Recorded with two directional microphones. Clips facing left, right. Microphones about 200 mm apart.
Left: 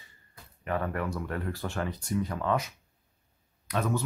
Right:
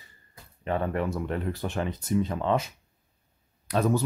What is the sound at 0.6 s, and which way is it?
Speech, 25° right (ahead or behind).